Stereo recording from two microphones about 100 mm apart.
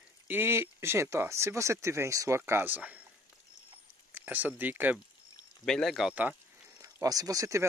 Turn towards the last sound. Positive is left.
turn(degrees=-35)  # may be behind; listen again after turning